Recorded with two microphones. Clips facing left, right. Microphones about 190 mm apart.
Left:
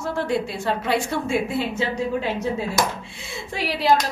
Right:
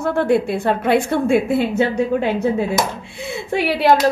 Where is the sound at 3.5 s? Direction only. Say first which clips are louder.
Right 5 dB; 60° right (ahead or behind).